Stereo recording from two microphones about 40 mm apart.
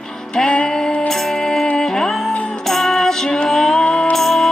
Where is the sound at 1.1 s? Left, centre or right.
Centre.